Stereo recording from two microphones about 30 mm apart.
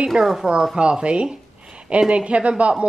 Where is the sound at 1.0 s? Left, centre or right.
Right.